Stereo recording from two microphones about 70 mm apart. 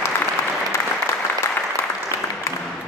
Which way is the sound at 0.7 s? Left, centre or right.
Left.